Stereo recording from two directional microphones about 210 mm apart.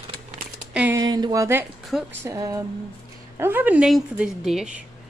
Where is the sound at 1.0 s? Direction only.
20° right (ahead or behind).